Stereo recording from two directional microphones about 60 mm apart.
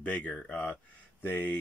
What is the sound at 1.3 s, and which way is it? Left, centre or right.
Speech, left.